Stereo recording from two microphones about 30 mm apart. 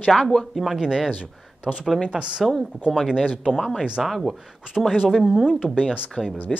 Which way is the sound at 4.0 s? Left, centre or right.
Centre.